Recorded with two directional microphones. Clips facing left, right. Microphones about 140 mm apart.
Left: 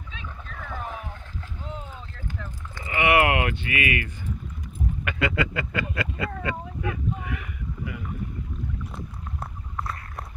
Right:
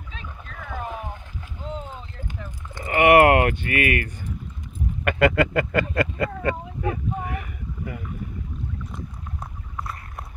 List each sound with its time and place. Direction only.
0.7 s boat: 15° right (ahead or behind)
2.1 s clip-clop: 15° right (ahead or behind)
2.8 s speech: 50° right (ahead or behind)
6.8 s a sound: 40° right (ahead or behind)